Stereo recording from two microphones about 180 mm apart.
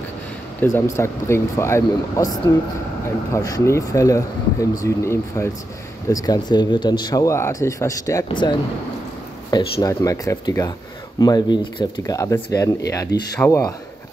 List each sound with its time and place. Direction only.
0.6 s speech: 15° left (ahead or behind)
3.3 s speech: 20° left (ahead or behind)